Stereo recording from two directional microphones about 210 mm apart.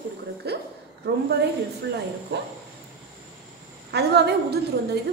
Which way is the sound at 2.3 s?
55° right (ahead or behind).